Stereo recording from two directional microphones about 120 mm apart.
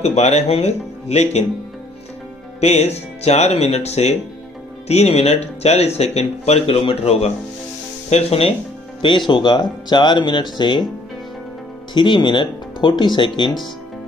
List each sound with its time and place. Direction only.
0.0 s speech: 65° left (ahead or behind)
2.6 s speech: 60° left (ahead or behind)
9.0 s speech: 45° left (ahead or behind)
11.9 s speech: 40° left (ahead or behind)